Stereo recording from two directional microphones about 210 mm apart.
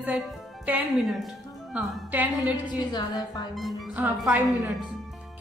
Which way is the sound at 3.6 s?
Centre (ahead or behind).